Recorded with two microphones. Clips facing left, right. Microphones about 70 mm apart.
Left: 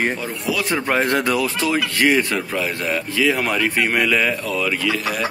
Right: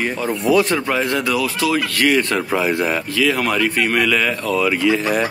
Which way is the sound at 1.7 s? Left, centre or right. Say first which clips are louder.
Even; left.